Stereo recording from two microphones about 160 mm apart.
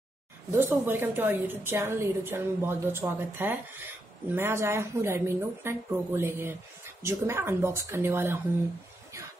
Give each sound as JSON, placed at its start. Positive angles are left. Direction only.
{"t": 0.6, "sound": "speech", "side_deg": -15}